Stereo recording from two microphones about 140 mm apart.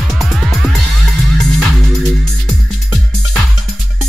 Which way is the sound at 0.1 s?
Centre (ahead or behind).